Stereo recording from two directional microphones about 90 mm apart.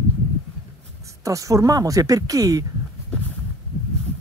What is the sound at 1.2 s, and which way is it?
Speech, 40° right (ahead or behind).